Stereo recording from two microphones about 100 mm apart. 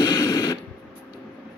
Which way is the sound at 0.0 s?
35° left (ahead or behind).